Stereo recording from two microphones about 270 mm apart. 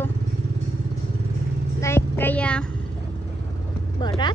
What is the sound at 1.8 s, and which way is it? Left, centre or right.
Speech, centre.